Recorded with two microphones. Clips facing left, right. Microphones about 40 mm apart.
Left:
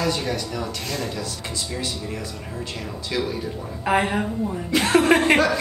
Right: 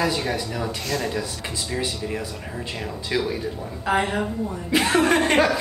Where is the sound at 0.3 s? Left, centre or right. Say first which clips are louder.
Right 1 dB; centre.